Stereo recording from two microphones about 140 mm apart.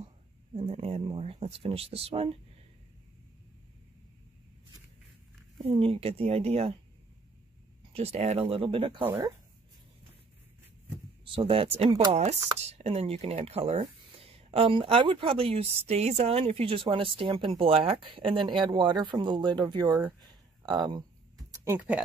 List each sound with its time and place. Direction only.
0.6 s speech: 45° right (ahead or behind)
5.6 s speech: 40° right (ahead or behind)
7.9 s speech: 50° right (ahead or behind)
11.3 s speech: 40° right (ahead or behind)
19.9 s speech: 15° right (ahead or behind)
20.2 s a sound: 30° right (ahead or behind)
21.5 s speech: 15° right (ahead or behind)